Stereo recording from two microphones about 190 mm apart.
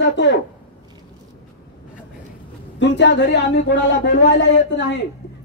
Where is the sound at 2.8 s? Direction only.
70° left (ahead or behind).